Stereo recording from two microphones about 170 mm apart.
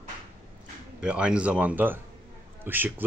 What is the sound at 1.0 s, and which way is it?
Speech, 5° right (ahead or behind).